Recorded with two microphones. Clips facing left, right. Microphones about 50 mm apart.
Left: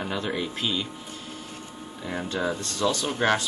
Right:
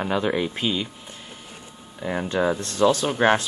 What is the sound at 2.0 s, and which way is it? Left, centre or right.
Speech, right.